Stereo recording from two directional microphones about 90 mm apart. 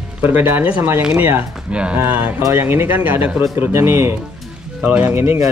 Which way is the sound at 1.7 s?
15° right (ahead or behind).